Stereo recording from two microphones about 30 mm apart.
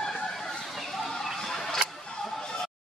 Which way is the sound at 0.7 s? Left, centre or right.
Centre.